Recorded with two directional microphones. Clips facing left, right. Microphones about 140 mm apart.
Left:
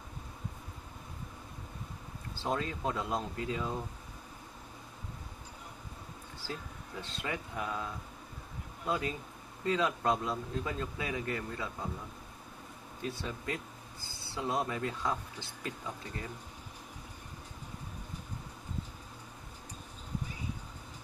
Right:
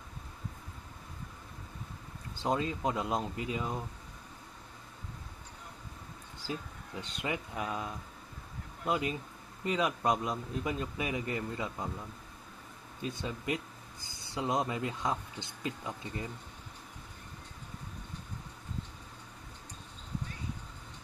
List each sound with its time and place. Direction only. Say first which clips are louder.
2.3 s speech: right 3 dB; 20° right (ahead or behind)
6.4 s speech: right 3 dB; 15° right (ahead or behind)
13.0 s speech: right 1 dB; 20° right (ahead or behind)